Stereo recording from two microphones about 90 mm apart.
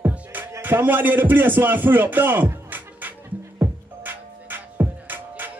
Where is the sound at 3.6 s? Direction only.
20° right (ahead or behind).